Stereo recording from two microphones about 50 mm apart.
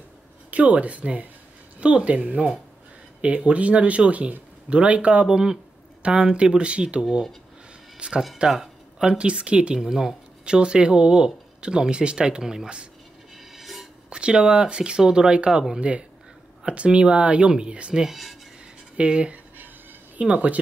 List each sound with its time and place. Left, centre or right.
0.5 s speech: right
13.6 s a sound: centre
14.1 s speech: centre
18.0 s speech: centre
18.9 s speech: right